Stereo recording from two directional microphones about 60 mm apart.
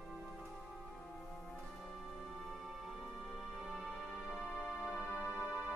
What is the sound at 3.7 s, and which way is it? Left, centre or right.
Music, centre.